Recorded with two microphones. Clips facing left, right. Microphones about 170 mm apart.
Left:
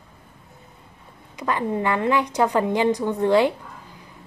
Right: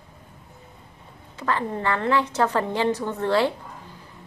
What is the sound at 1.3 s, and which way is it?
A woman's voice, 15° left (ahead or behind).